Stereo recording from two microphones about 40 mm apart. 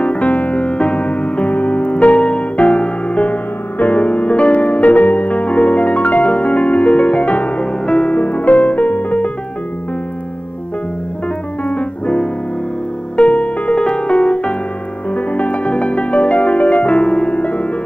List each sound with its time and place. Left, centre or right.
0.0 s music: left
8.2 s music: left
11.6 s music: left